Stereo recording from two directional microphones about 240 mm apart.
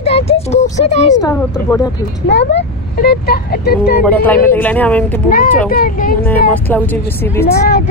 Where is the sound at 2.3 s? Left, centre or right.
Left.